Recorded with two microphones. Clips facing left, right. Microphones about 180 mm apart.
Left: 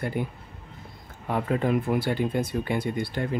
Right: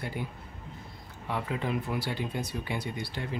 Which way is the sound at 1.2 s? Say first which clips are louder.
Left 7 dB; 50° left (ahead or behind).